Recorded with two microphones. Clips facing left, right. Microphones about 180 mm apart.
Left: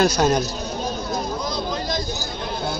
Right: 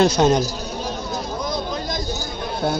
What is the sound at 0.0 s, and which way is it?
Speech, 25° right (ahead or behind).